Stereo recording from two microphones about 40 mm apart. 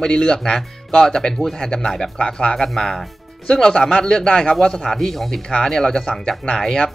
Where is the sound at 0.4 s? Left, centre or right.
Centre.